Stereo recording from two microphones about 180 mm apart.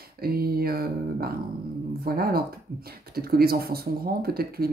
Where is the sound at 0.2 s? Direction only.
60° right (ahead or behind).